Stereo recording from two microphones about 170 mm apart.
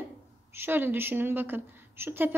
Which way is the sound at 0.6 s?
10° right (ahead or behind).